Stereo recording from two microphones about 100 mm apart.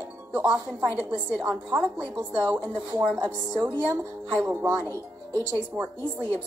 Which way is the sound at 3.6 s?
15° right (ahead or behind).